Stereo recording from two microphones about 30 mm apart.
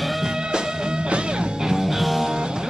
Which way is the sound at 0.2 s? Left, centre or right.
Right.